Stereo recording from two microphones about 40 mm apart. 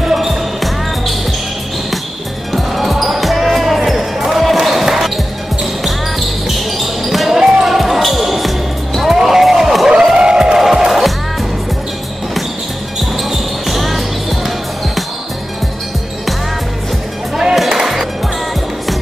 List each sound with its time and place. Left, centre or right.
0.0 s basketball bounce: centre
2.5 s basketball bounce: centre
10.1 s music: centre
13.1 s basketball bounce: centre
17.6 s music: centre